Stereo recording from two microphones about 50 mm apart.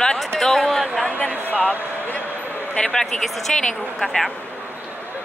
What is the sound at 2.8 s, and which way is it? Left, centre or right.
Speech, centre.